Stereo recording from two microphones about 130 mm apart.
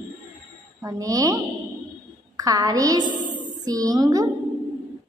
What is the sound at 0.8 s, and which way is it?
A woman's voice, 25° right (ahead or behind).